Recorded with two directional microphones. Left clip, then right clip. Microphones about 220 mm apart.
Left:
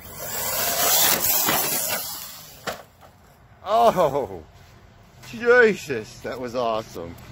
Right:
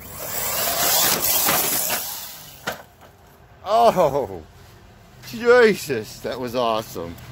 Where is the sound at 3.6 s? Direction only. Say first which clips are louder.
Right 2 dB; 5° right (ahead or behind).